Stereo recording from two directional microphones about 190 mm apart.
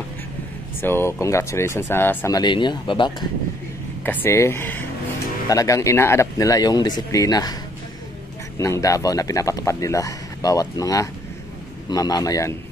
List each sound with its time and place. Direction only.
0.7 s speech: 10° left (ahead or behind)
4.0 s speech: 10° left (ahead or behind)
8.5 s a man's voice: 15° left (ahead or behind)